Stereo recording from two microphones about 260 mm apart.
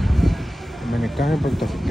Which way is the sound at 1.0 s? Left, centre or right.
Centre.